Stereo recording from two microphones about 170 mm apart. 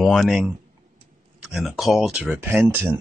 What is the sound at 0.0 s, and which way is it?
Speech, centre (ahead or behind).